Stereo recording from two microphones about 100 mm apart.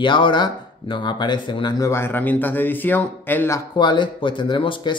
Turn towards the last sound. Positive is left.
turn(degrees=55)  # may be behind; listen again after turning